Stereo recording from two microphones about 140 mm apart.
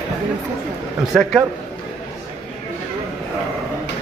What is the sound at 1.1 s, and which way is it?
Speech, centre (ahead or behind).